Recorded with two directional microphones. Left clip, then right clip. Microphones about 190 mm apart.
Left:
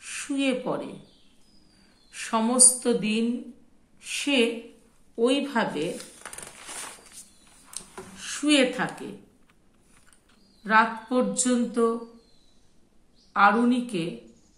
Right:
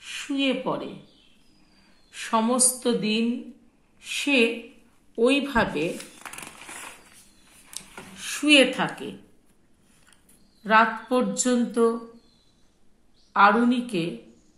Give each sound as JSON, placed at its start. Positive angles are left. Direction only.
{"t": 0.0, "sound": "speech", "side_deg": -10}
{"t": 2.0, "sound": "a woman's voice", "side_deg": -15}
{"t": 7.8, "sound": "a sound", "side_deg": -25}
{"t": 8.2, "sound": "a woman's voice", "side_deg": -30}
{"t": 10.6, "sound": "speech", "side_deg": -20}
{"t": 13.3, "sound": "speech", "side_deg": -20}